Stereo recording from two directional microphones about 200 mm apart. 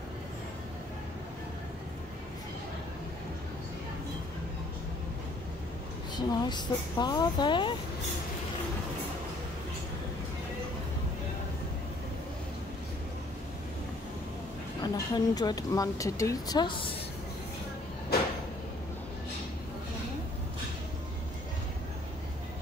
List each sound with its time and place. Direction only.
6.1 s speech: 20° left (ahead or behind)
14.8 s speech: 20° left (ahead or behind)